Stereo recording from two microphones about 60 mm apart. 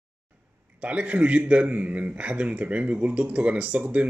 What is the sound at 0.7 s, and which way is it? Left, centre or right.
A man's voice, right.